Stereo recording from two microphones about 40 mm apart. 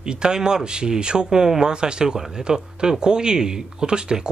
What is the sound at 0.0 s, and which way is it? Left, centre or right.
Speech, centre.